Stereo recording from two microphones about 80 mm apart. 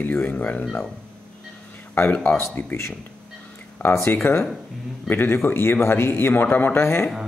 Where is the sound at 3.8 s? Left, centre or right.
Left.